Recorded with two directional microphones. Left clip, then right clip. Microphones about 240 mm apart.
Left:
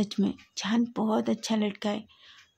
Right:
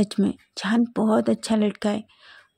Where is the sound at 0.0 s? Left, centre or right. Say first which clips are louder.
Right 6 dB; right.